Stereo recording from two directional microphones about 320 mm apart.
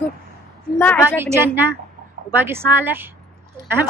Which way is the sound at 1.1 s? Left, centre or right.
Centre.